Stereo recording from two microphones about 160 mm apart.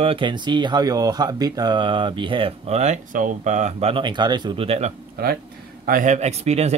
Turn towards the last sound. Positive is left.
turn(degrees=-40)  # may be behind; listen again after turning